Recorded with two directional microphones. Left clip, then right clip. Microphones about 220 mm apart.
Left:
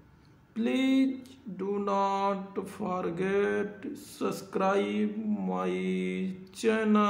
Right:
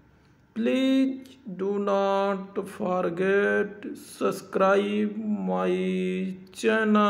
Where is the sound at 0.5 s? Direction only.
15° right (ahead or behind).